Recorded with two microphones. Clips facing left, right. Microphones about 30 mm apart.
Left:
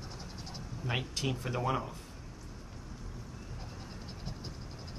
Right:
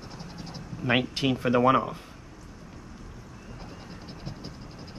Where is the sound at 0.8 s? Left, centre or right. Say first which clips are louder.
Right 10 dB; right.